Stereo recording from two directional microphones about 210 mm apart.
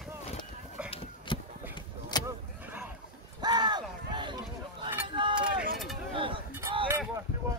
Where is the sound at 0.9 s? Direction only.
25° left (ahead or behind).